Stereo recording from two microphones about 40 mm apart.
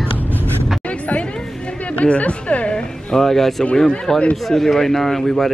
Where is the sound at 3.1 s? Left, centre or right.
Centre.